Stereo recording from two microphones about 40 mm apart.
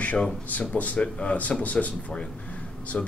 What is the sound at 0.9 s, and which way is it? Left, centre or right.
Speech, left.